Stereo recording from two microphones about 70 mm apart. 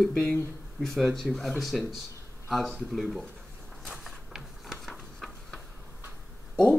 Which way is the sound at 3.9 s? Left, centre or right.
Centre.